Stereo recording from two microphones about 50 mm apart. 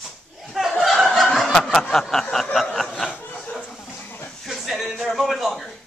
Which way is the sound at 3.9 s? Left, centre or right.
Left.